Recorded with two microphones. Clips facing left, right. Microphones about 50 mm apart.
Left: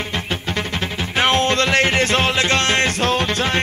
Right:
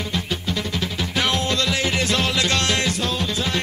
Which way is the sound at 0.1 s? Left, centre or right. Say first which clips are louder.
Left 2 dB; left.